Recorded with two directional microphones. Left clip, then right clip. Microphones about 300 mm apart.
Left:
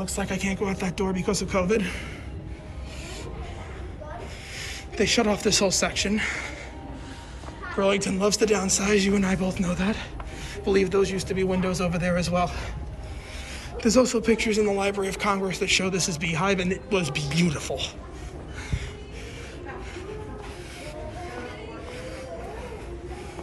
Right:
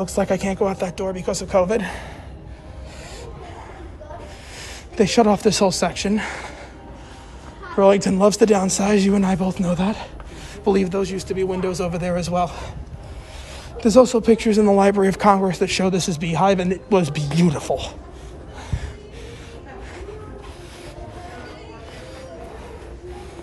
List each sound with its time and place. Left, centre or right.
0.0 s speech: right
0.6 s a man's voice: centre
4.6 s speech: centre
7.7 s a man's voice: right
13.7 s a man's voice: centre